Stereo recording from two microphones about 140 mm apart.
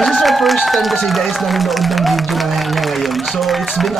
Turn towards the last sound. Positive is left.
turn(degrees=0)  # may be behind; listen again after turning